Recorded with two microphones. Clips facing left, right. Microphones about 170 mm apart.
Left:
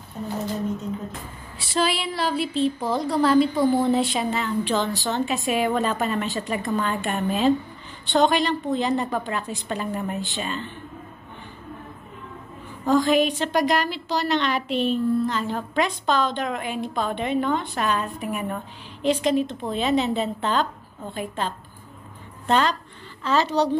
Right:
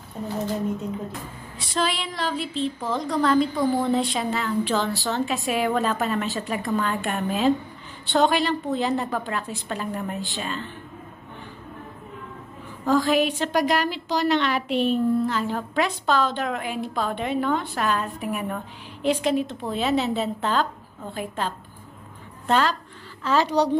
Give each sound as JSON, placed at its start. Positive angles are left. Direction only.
{"t": 1.7, "sound": "a woman's voice", "side_deg": 10}
{"t": 13.0, "sound": "a woman's voice", "side_deg": -5}